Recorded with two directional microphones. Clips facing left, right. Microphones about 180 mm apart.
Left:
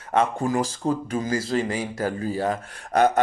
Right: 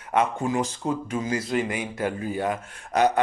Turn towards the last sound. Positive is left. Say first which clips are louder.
# left 2 dB
turn(degrees=50)  # may be behind; listen again after turning